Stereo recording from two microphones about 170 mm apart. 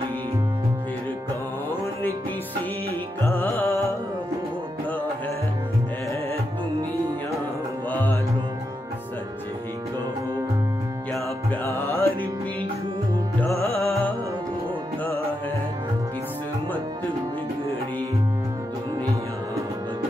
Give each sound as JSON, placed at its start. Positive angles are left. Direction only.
{"t": 3.3, "sound": "music", "side_deg": 15}
{"t": 7.9, "sound": "music", "side_deg": 10}
{"t": 11.6, "sound": "music", "side_deg": 15}
{"t": 13.4, "sound": "music", "side_deg": 15}